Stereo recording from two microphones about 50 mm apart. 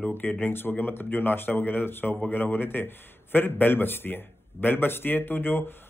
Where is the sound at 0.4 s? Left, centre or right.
Left.